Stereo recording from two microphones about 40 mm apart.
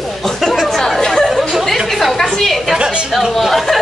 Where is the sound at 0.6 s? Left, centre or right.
Centre.